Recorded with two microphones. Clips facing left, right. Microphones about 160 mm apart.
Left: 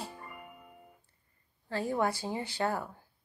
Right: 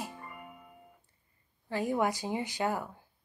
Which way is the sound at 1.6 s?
15° right (ahead or behind).